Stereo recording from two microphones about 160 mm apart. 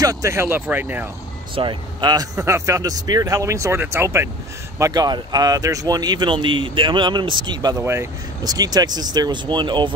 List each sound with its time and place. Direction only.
0.0 s speech: 20° right (ahead or behind)
1.5 s speech: 30° right (ahead or behind)
7.8 s speech: 15° right (ahead or behind)